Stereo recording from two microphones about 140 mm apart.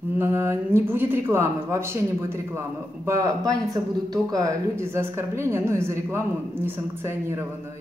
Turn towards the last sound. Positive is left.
turn(degrees=-20)  # may be behind; listen again after turning